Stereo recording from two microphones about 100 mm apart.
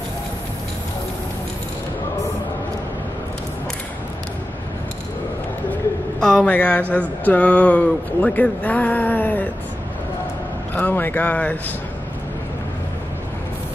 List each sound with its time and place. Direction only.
6.1 s speech: 5° left (ahead or behind)
10.7 s speech: 20° left (ahead or behind)